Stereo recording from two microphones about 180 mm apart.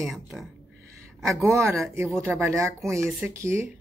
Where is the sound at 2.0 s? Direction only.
15° right (ahead or behind).